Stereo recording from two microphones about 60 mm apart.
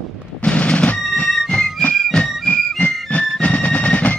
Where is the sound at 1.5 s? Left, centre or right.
Centre.